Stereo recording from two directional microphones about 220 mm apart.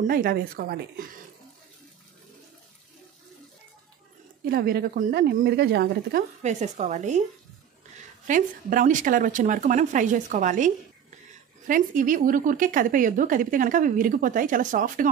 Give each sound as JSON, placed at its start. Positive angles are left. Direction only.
{"t": 0.0, "sound": "a woman's voice", "side_deg": -40}
{"t": 4.5, "sound": "speech", "side_deg": -45}
{"t": 6.4, "sound": "a woman's voice", "side_deg": -30}
{"t": 8.3, "sound": "a woman's voice", "side_deg": -35}